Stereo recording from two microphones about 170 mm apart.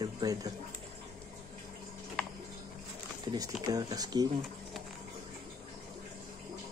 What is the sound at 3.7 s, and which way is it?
Speech, 20° right (ahead or behind).